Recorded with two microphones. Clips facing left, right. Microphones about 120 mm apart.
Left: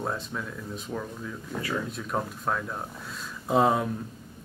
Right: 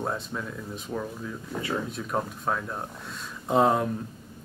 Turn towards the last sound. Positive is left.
turn(degrees=0)  # may be behind; listen again after turning